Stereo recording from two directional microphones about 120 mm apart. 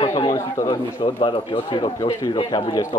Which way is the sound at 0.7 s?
40° left (ahead or behind).